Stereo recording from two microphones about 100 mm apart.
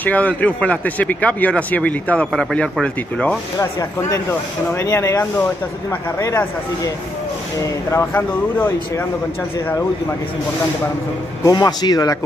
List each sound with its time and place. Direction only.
0.0 s speech: 15° left (ahead or behind)
4.3 s a man's voice: 25° left (ahead or behind)
7.6 s a man's voice: 30° left (ahead or behind)
11.4 s a man's voice: 45° left (ahead or behind)